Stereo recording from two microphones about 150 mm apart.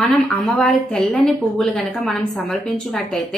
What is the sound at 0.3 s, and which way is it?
A woman's voice, 5° left (ahead or behind).